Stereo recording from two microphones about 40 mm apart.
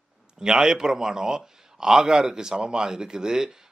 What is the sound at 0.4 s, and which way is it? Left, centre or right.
A man's voice, centre.